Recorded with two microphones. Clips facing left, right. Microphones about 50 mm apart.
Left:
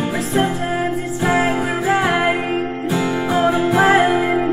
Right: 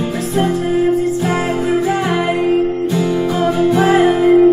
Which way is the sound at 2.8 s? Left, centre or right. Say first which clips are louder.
Right 3 dB; centre.